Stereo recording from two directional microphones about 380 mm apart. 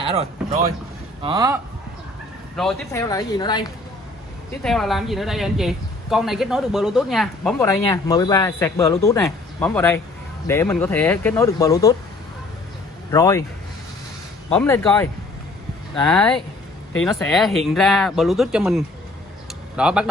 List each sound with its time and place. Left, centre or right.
0.0 s speech: centre
2.5 s speech: centre
4.6 s speech: centre
13.1 s speech: centre
14.5 s speech: centre